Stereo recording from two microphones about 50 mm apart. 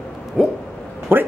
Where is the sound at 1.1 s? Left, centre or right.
Right.